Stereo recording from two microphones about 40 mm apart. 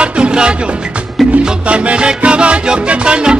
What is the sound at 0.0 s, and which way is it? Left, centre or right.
Music, right.